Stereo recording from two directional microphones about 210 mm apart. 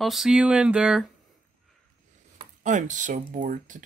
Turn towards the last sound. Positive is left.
turn(degrees=-40)  # may be behind; listen again after turning